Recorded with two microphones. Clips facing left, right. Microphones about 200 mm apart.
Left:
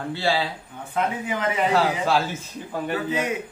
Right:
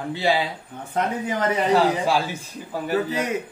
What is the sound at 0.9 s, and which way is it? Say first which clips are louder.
Speech: right 1 dB; 40° right (ahead or behind).